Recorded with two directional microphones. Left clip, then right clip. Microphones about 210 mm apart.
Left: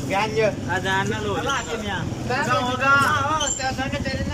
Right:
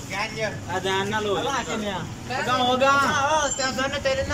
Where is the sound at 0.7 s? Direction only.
10° right (ahead or behind).